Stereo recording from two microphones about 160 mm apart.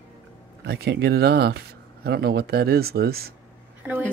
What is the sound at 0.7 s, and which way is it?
A man's voice, 85° right.